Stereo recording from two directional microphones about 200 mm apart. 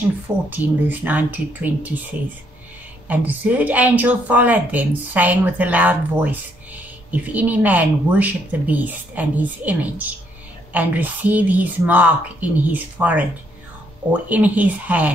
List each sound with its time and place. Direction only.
0.5 s a woman's voice: 10° right (ahead or behind)
3.1 s a woman's voice: 10° right (ahead or behind)